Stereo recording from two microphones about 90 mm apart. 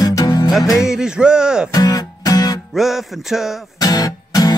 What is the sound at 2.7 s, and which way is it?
Music, 5° right (ahead or behind).